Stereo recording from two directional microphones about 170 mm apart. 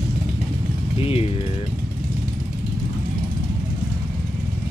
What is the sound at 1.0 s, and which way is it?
Speech, 35° left (ahead or behind).